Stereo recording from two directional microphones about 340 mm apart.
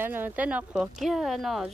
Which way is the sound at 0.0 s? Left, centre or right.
Centre.